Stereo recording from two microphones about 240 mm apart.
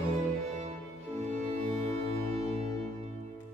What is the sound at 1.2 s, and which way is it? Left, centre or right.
Music, right.